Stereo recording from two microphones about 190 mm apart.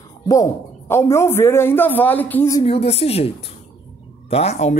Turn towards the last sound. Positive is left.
turn(degrees=35)  # may be behind; listen again after turning